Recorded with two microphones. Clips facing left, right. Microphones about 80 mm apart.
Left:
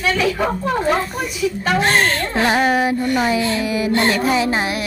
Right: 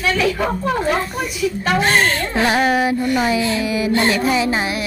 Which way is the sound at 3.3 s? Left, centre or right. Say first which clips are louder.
Even; left.